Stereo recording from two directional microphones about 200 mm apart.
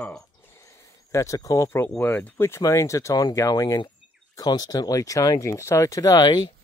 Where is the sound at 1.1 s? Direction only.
15° left (ahead or behind).